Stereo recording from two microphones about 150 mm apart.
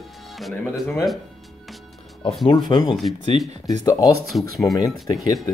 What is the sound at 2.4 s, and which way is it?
Speech, 30° left (ahead or behind).